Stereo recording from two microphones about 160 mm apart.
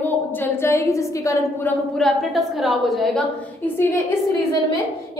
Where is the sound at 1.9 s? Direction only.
Centre (ahead or behind).